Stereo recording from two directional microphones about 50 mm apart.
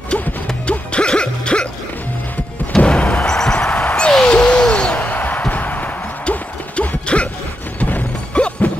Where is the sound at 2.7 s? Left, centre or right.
Left.